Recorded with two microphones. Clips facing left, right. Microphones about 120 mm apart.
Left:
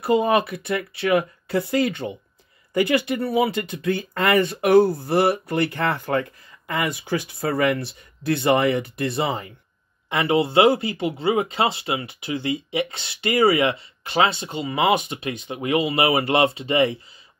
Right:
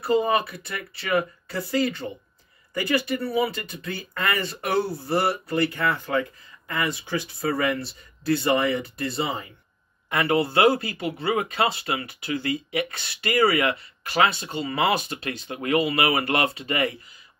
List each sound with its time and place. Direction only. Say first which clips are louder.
0.0 s speech: left 3 dB; 75° left (ahead or behind)
4.4 s speech: left 12 dB; 55° left (ahead or behind)
5.1 s speech: left 1 dB; 70° left (ahead or behind)
10.0 s speech: left 2 dB; 25° left (ahead or behind)